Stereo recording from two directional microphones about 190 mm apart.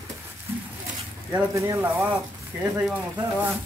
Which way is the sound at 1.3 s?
15° right (ahead or behind).